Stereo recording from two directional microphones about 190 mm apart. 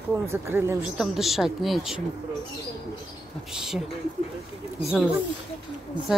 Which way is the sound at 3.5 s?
5° right (ahead or behind).